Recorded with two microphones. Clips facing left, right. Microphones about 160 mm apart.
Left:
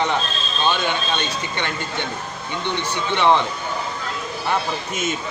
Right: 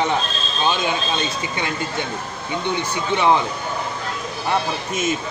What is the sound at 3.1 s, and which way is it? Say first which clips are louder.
Speech: even; 5° right (ahead or behind).